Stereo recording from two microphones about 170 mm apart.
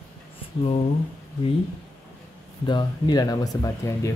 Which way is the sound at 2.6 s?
25° left (ahead or behind).